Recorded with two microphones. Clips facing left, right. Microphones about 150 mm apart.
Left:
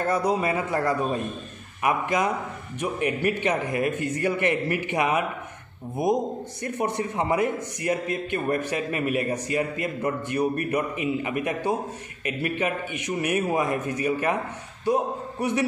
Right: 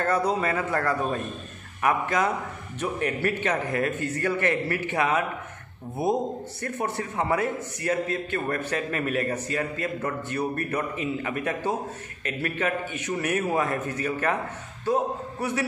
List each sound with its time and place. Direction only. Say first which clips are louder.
0.0 s a man's voice: left 1 dB; 15° left (ahead or behind)